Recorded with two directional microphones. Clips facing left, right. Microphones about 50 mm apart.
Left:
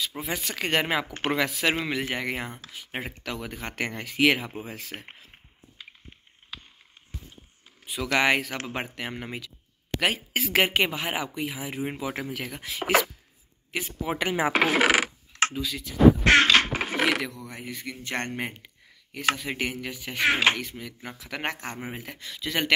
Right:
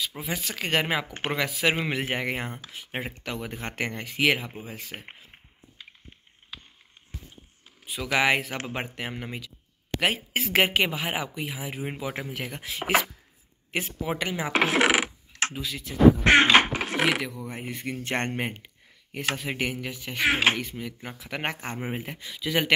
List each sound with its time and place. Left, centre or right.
0.0 s speech: centre
4.7 s speech: centre
5.8 s a sound: centre
7.8 s speech: centre
9.2 s speech: centre
9.9 s speech: centre
14.0 s speech: centre
14.5 s coin: centre
16.3 s a sound: right
16.7 s coin: centre
17.6 s speech: right
18.4 s speech: centre
22.2 s speech: centre